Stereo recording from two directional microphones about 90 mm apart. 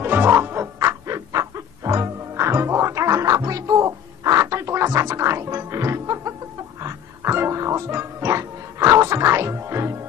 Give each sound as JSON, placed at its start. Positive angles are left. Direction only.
{"t": 0.0, "sound": "music", "side_deg": -25}